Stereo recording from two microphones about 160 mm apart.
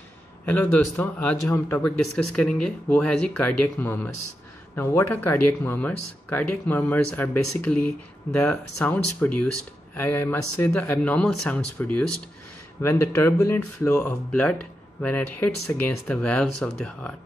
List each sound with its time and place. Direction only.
0.5 s speech: 10° left (ahead or behind)